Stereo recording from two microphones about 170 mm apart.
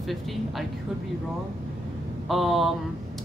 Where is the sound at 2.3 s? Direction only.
Centre (ahead or behind).